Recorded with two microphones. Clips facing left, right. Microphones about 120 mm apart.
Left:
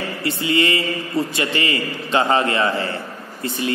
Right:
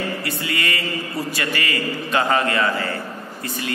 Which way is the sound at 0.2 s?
25° left (ahead or behind).